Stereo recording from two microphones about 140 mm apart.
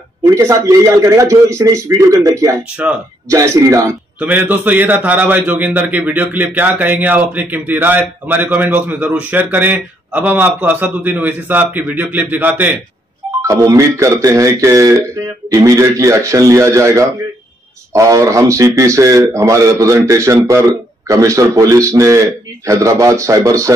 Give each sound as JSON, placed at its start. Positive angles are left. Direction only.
{"t": 0.2, "sound": "speech", "side_deg": -20}
{"t": 4.2, "sound": "a man's voice", "side_deg": -10}